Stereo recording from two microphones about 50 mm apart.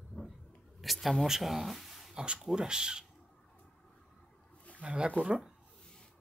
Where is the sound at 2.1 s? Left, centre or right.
Centre.